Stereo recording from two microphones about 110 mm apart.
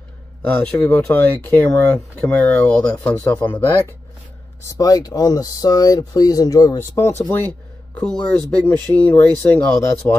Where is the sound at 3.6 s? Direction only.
20° left (ahead or behind).